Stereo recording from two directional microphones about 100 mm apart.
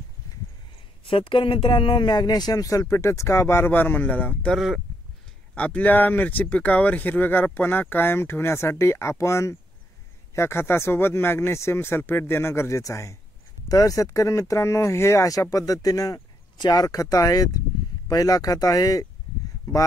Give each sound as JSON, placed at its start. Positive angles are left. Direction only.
{"t": 1.0, "sound": "speech", "side_deg": 60}
{"t": 4.6, "sound": "speech", "side_deg": -5}
{"t": 5.5, "sound": "speech", "side_deg": 15}